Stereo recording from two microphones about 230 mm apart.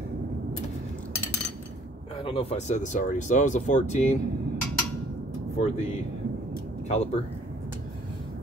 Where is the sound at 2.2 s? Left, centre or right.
Left.